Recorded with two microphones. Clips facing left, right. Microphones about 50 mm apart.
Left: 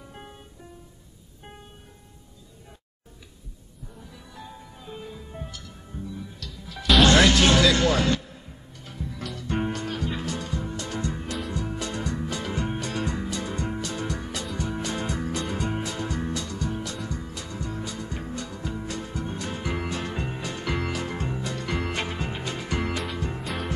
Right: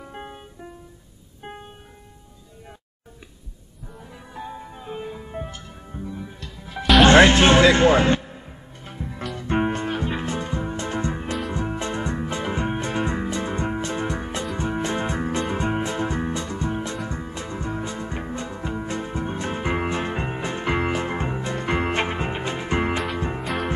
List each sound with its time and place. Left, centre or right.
0.0 s music: right
1.4 s music: right
4.1 s music: right
23.4 s music: centre